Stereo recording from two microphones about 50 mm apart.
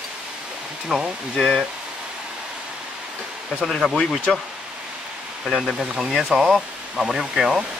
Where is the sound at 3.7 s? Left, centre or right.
Centre.